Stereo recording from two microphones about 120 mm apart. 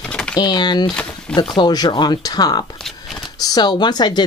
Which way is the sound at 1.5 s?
35° left (ahead or behind).